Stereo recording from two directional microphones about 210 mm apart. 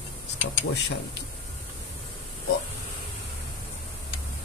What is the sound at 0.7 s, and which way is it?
Speech, 55° left (ahead or behind).